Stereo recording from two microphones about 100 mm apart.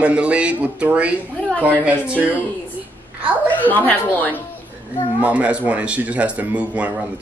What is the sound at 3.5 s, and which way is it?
Speech, 20° left (ahead or behind).